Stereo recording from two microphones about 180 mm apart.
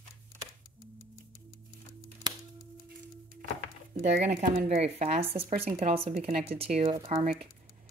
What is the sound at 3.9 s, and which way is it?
Speech, 45° right (ahead or behind).